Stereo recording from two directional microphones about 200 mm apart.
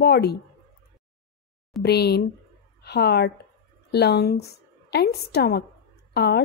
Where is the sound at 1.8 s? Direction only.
55° left (ahead or behind).